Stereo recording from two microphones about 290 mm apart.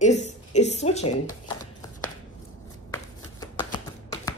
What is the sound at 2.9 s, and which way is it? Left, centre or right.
Shuffling cards, centre.